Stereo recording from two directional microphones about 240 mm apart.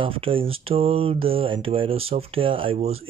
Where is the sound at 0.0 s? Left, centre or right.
Right.